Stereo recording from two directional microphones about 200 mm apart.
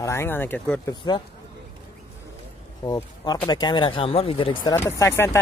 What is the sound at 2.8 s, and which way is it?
Speech, 20° left (ahead or behind).